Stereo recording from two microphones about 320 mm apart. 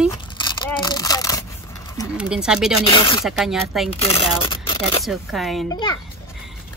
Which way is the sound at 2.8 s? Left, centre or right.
Centre.